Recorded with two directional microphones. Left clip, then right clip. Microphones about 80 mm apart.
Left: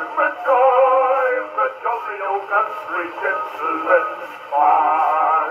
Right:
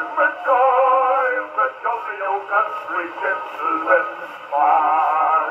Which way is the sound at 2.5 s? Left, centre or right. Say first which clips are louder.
Even; right.